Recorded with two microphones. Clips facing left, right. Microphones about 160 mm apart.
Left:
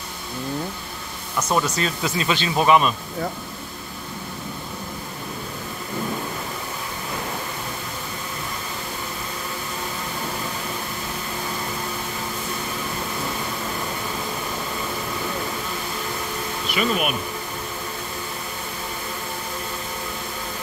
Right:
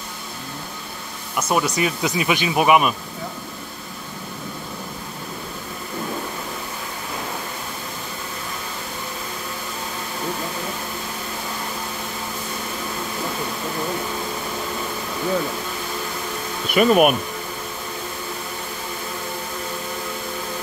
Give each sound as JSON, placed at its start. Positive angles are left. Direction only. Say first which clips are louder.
{"t": 1.3, "sound": "speech", "louder": "right 1 dB", "side_deg": -10}
{"t": 16.7, "sound": "speech", "louder": "right 9 dB", "side_deg": -50}